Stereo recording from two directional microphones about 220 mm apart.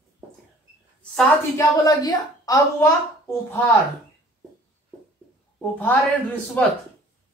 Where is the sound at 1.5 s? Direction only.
15° left (ahead or behind).